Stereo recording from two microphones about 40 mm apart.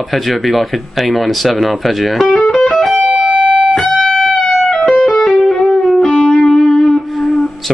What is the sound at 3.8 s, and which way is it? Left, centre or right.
Music, centre.